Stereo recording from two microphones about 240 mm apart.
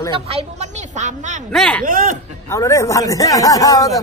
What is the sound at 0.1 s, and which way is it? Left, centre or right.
A woman's voice, right.